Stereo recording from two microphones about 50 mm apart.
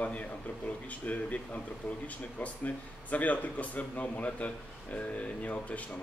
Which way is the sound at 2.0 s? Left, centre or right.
Left.